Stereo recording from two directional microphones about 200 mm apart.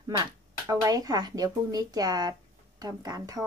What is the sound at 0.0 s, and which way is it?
A woman's voice, 15° right (ahead or behind).